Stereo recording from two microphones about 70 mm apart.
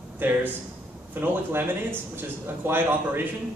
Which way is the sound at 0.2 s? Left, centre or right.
Right.